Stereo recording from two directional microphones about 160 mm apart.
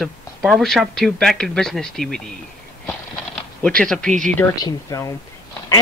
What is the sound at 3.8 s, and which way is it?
Speech, 5° left (ahead or behind).